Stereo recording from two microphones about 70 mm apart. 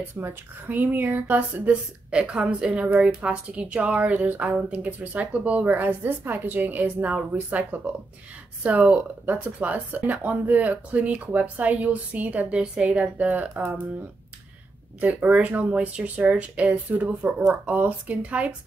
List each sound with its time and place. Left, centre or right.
0.1 s speech: right
1.7 s a woman's voice: centre
15.0 s speech: centre